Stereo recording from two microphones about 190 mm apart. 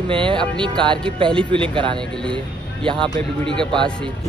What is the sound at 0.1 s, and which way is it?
Speech, 25° right (ahead or behind).